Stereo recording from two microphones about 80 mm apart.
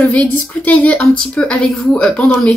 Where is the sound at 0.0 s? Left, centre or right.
Centre.